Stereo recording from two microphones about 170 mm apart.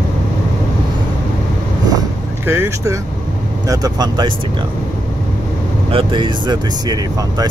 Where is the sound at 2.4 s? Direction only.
15° right (ahead or behind).